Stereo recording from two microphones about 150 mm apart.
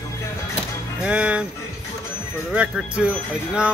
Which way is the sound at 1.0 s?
10° right (ahead or behind).